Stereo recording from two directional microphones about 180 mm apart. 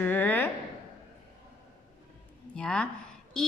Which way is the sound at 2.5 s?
5° left (ahead or behind).